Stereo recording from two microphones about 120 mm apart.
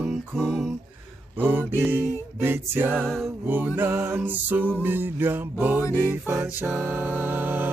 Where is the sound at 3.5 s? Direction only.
15° right (ahead or behind).